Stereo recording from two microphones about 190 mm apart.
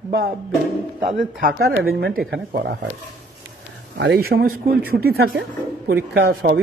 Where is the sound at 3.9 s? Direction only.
60° right (ahead or behind).